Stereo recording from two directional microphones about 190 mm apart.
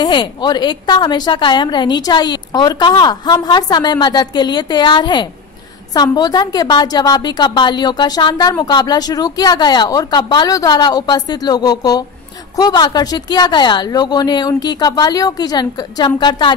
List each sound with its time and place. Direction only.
0.0 s a woman's voice: 25° left (ahead or behind)